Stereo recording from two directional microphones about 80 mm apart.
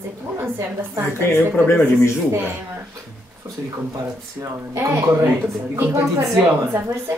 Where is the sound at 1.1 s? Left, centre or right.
Left.